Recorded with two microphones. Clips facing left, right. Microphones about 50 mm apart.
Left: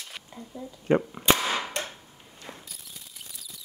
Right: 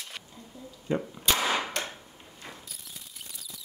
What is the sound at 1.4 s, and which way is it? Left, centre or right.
Cap gun, centre.